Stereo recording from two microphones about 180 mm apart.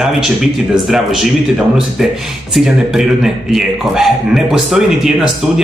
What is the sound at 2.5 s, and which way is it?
Speech, centre (ahead or behind).